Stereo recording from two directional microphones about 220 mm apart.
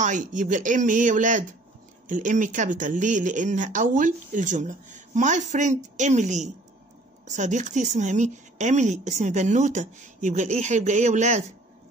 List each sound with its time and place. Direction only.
0.0 s speech: 35° right (ahead or behind)